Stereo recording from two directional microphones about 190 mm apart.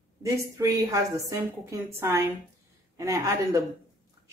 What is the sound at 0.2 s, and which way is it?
Speech, 15° right (ahead or behind).